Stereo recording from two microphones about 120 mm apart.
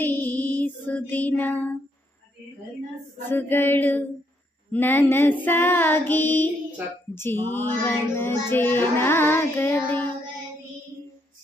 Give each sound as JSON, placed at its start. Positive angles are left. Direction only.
{"t": 0.0, "sound": "child singing", "side_deg": 15}
{"t": 3.3, "sound": "child singing", "side_deg": 15}